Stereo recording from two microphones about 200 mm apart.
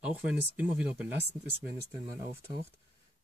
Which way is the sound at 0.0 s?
5° right (ahead or behind).